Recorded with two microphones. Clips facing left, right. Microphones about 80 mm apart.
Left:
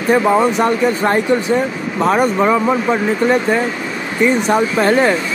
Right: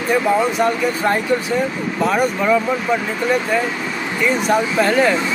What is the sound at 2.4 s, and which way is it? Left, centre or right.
Speech, left.